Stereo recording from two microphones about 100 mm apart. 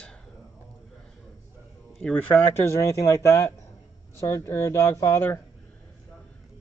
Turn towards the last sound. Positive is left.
turn(degrees=30)  # may be behind; listen again after turning